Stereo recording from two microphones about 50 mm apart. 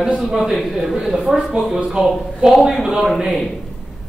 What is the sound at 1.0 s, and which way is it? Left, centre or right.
Speech, centre.